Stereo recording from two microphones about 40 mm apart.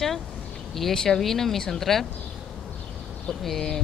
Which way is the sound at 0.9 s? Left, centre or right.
Centre.